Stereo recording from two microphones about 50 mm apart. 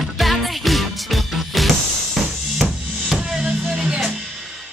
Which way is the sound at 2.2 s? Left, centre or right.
Centre.